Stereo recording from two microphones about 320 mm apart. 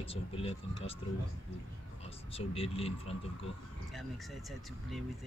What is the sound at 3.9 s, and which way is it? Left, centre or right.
Speech, centre.